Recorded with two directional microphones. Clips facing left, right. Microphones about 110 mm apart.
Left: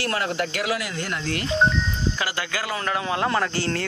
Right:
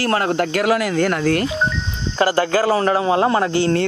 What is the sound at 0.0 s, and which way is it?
Speech, 45° right (ahead or behind).